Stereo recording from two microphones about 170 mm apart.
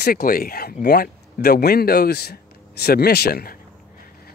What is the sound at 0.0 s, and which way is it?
Speech, 65° left (ahead or behind).